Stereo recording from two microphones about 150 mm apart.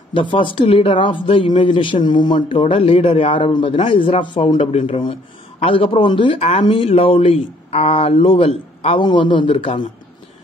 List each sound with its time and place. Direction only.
0.1 s a woman's voice: 35° left (ahead or behind)